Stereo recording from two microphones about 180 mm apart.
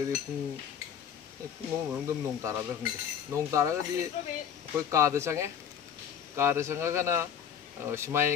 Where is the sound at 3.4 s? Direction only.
15° right (ahead or behind).